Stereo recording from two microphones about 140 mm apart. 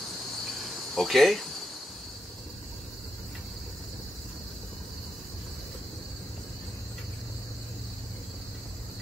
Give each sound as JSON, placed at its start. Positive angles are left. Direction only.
{"t": 0.5, "sound": "cricket", "side_deg": 0}